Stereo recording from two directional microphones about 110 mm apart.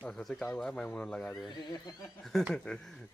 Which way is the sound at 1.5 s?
40° left (ahead or behind).